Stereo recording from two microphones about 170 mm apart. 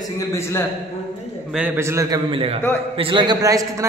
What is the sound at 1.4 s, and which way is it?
Speech, 5° right (ahead or behind).